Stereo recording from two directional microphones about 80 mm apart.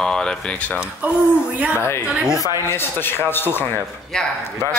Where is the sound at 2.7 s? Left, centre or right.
Left.